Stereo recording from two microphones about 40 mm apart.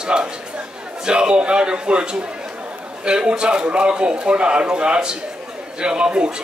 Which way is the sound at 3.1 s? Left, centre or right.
Right.